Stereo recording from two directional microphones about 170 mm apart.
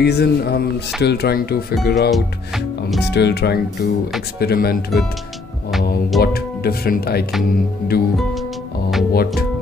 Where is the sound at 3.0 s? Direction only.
80° left.